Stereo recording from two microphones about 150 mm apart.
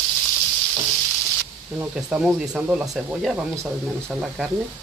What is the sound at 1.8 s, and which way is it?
Speech, 5° right (ahead or behind).